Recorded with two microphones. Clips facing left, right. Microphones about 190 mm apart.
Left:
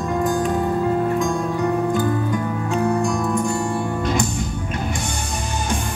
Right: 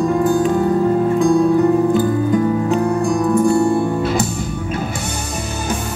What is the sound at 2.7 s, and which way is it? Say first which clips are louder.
Music: right 4 dB; 35° right (ahead or behind).